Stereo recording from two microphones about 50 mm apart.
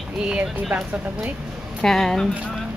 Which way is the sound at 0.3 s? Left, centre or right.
Right.